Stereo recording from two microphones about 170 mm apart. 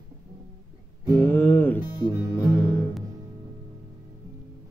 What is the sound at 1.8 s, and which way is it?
Music, 15° right (ahead or behind).